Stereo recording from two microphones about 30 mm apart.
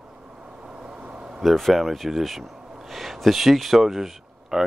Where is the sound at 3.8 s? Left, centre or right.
Centre.